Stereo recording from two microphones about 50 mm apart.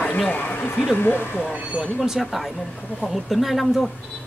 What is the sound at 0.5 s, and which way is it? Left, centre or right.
Speech, left.